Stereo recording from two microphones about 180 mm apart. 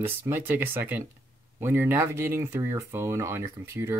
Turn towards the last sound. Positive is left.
turn(degrees=-15)  # may be behind; listen again after turning